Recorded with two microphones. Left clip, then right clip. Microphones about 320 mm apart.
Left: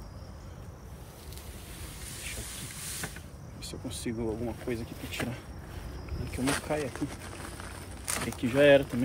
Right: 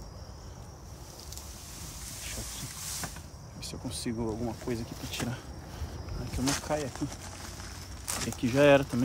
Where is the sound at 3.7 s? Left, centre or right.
Centre.